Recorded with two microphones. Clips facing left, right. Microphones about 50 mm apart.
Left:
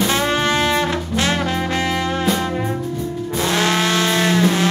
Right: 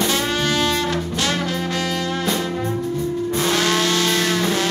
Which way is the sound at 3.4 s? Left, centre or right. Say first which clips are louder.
Left 2 dB; left.